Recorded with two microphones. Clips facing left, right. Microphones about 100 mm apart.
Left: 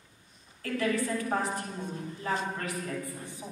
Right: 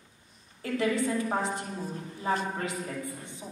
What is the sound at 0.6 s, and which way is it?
A man's voice, 20° right (ahead or behind).